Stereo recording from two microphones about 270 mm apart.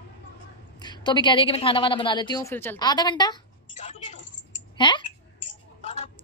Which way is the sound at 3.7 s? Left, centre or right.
Left.